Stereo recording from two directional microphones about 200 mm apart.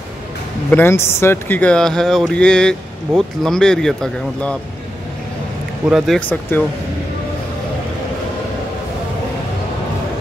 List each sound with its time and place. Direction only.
0.7 s speech: 10° left (ahead or behind)
5.9 s speech: centre (ahead or behind)